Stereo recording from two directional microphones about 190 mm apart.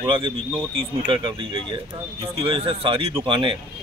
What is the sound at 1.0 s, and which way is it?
Speech, 25° right (ahead or behind).